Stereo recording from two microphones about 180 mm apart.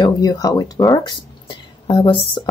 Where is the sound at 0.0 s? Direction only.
20° left (ahead or behind).